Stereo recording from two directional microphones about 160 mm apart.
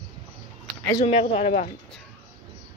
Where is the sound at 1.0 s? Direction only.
35° left (ahead or behind).